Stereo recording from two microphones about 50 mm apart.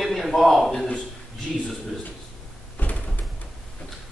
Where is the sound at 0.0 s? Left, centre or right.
Centre.